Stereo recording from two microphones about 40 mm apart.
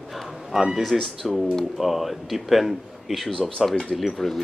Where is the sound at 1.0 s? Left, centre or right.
Centre.